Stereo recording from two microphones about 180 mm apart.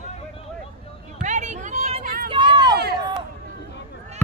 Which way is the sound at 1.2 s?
40° right (ahead or behind).